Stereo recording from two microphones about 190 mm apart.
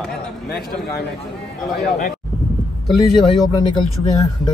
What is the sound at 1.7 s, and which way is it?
Speech, 60° left (ahead or behind).